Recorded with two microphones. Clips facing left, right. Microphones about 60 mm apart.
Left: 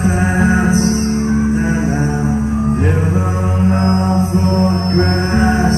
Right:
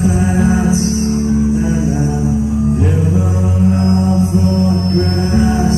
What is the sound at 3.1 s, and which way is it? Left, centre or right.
Mantra, left.